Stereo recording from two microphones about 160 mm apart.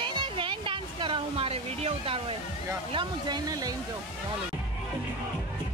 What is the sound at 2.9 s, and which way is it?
Speech, 25° right (ahead or behind).